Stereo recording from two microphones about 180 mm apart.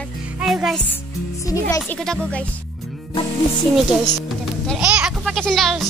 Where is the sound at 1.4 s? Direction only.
15° left (ahead or behind).